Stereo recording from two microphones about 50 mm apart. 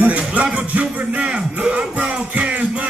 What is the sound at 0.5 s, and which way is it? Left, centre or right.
Music, right.